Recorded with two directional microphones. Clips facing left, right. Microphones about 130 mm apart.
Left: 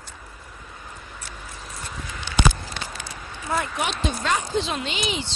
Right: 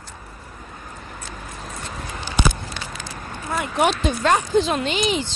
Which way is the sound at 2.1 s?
45° right (ahead or behind).